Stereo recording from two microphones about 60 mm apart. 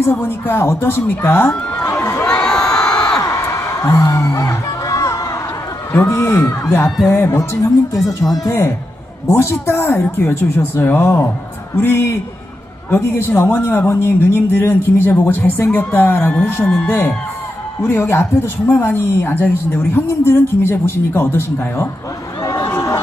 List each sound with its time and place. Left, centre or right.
0.0 s speech: left
2.2 s crowd: centre
3.2 s music: left
5.9 s speech: left
8.1 s speech: left
9.3 s speech: left
22.4 s run: left